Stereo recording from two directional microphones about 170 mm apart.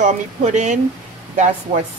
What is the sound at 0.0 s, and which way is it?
Speech, 45° right (ahead or behind).